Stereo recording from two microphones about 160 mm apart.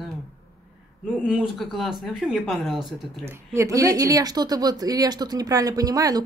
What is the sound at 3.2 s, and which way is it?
Speech, 20° right (ahead or behind).